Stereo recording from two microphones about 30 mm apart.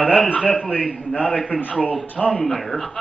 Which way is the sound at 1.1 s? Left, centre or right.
Left.